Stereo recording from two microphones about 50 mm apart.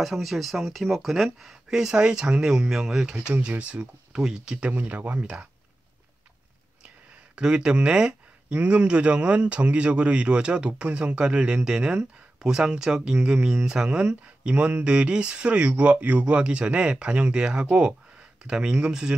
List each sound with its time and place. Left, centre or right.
0.0 s speech: centre
1.9 s speech: centre
3.3 s speech: right
4.6 s speech: right
7.3 s speech: centre